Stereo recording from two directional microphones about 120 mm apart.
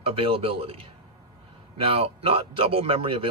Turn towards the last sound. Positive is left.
turn(degrees=-50)  # may be behind; listen again after turning